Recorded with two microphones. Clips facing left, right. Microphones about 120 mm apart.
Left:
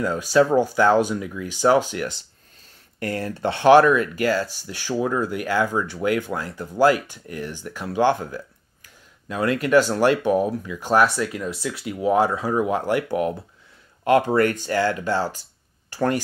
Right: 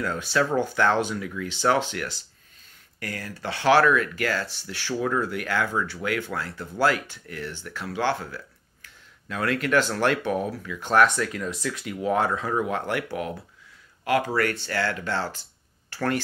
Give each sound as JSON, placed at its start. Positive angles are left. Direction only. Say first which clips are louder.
{"t": 0.3, "sound": "speech", "louder": "left 7 dB", "side_deg": 15}
{"t": 3.0, "sound": "speech", "louder": "left 9 dB", "side_deg": 30}
{"t": 12.5, "sound": "speech", "louder": "left 6 dB", "side_deg": 20}
{"t": 14.0, "sound": "speech", "louder": "left 6 dB", "side_deg": 25}